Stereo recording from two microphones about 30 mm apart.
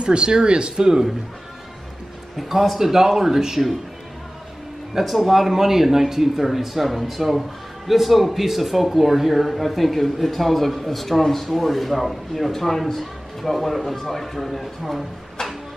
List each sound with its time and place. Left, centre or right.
0.0 s speech: right
2.3 s speech: centre
5.0 s a man's voice: centre